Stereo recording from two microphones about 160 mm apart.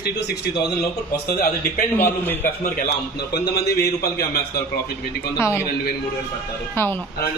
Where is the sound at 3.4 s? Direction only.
75° left (ahead or behind).